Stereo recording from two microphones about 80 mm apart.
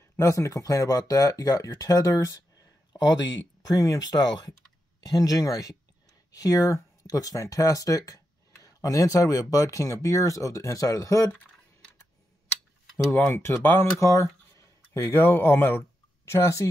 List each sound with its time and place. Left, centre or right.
0.2 s speech: left
13.1 s speech: left
14.6 s a sound: left
15.1 s speech: left
16.3 s speech: left